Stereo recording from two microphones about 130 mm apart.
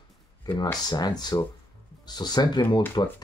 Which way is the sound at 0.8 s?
30° left (ahead or behind).